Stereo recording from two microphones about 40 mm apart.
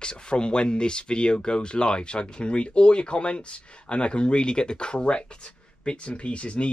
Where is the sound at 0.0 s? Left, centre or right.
Left.